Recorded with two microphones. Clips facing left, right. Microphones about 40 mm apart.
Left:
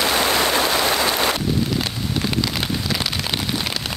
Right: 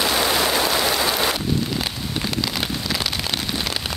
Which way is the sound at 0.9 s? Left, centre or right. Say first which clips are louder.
Left 1 dB; left.